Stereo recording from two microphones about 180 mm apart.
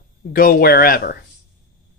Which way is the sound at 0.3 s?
55° left (ahead or behind).